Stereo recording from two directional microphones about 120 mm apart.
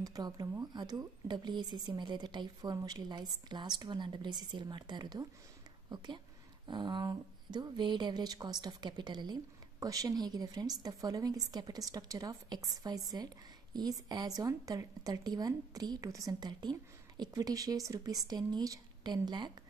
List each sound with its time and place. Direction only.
0.0 s speech: 30° right (ahead or behind)